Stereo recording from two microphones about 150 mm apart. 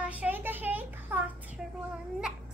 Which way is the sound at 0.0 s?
10° right (ahead or behind).